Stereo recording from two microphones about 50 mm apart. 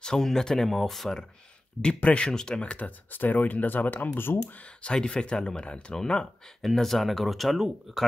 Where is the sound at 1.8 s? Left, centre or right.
Left.